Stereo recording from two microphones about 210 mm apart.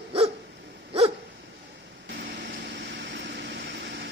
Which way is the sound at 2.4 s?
55° right (ahead or behind).